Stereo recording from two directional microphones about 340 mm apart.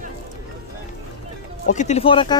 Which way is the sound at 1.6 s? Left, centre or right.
Left.